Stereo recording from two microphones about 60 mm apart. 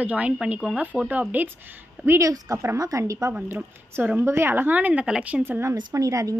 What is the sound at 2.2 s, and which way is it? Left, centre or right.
A woman's voice, right.